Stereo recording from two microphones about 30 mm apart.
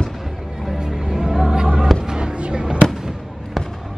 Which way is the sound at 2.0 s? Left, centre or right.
Right.